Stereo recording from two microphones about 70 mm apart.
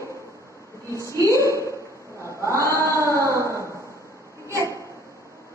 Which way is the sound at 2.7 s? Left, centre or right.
Right.